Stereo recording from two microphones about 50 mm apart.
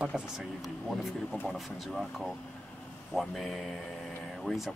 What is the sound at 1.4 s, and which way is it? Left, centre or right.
Speech, centre.